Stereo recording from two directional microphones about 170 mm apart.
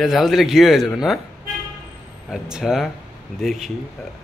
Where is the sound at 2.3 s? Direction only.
Centre (ahead or behind).